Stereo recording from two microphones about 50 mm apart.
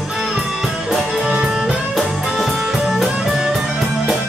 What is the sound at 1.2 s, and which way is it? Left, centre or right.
Music, right.